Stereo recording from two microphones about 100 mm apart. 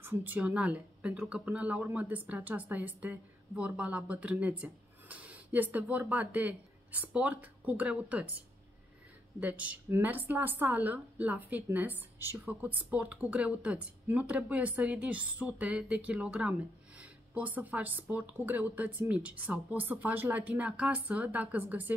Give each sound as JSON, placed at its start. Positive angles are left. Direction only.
{"t": 0.0, "sound": "a woman's voice", "side_deg": -20}
{"t": 9.4, "sound": "speech", "side_deg": -15}